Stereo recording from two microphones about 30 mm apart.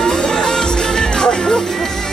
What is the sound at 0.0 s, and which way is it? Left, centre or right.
Music, left.